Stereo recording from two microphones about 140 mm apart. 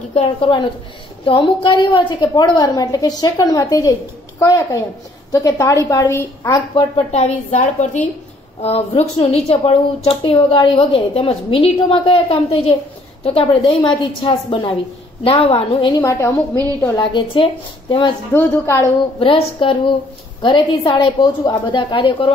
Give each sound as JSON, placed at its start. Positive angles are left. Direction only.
{"t": 0.1, "sound": "a woman's voice", "side_deg": 45}
{"t": 6.7, "sound": "speech", "side_deg": 45}
{"t": 8.5, "sound": "a woman's voice", "side_deg": 45}
{"t": 16.0, "sound": "a woman's voice", "side_deg": 20}
{"t": 17.0, "sound": "a woman's voice", "side_deg": 35}
{"t": 18.3, "sound": "a woman's voice", "side_deg": 15}
{"t": 19.1, "sound": "a woman's voice", "side_deg": 40}